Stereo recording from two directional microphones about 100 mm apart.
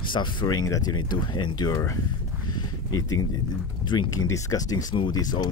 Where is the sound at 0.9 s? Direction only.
50° left (ahead or behind).